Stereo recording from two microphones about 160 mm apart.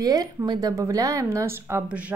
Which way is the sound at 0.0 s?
25° right (ahead or behind).